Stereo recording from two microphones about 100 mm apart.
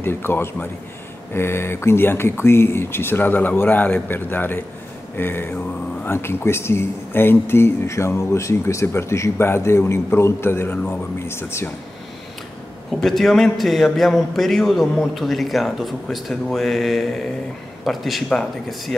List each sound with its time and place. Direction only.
0.0 s speech: 25° left (ahead or behind)
13.0 s a man's voice: centre (ahead or behind)